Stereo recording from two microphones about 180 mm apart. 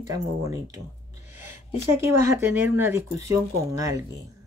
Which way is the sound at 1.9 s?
15° right (ahead or behind).